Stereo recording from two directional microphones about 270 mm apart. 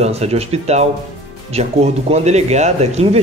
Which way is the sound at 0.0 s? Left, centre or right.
Right.